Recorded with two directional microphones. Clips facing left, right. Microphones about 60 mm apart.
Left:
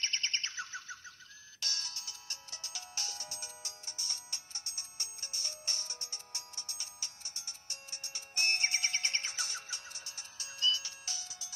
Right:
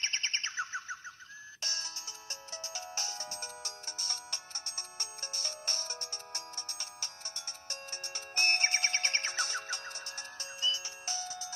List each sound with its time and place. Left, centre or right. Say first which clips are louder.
0.0 s music: right 2 dB; right
1.6 s ringtone: even; right
10.6 s music: left 1 dB; right
11.1 s music: right 8 dB; right